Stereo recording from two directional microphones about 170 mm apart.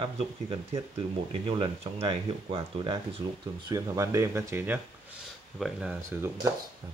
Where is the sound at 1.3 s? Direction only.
30° right (ahead or behind); by 6.3 s 5° right (ahead or behind).